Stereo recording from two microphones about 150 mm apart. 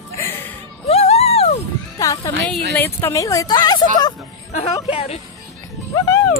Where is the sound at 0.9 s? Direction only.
45° left (ahead or behind).